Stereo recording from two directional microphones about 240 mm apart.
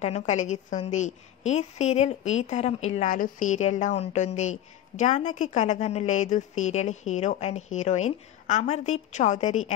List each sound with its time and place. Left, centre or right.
0.0 s a woman's voice: left